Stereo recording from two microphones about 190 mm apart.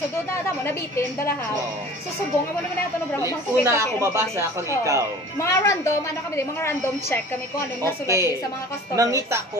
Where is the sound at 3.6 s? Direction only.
15° right (ahead or behind).